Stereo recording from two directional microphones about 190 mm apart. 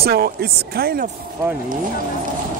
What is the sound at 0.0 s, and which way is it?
Speech, 55° right (ahead or behind).